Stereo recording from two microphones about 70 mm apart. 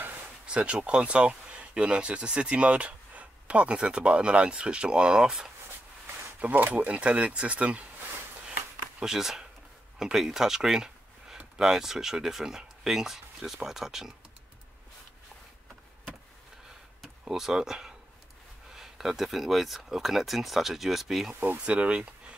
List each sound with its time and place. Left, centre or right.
0.5 s speech: centre
6.4 s speech: right
9.0 s speech: centre
17.2 s speech: centre
21.4 s speech: right
21.6 s speech: centre